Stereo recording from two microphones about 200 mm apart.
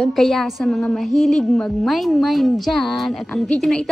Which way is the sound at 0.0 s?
Centre (ahead or behind).